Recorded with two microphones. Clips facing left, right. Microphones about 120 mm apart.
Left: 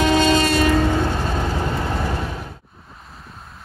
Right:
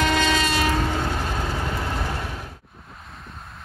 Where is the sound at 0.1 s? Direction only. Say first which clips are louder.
Left 5 dB; 30° left (ahead or behind).